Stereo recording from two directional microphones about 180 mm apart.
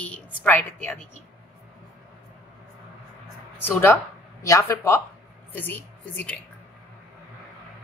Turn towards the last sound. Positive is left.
turn(degrees=10)  # may be behind; listen again after turning